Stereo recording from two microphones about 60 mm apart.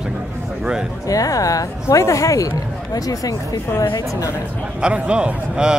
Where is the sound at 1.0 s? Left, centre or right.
Left.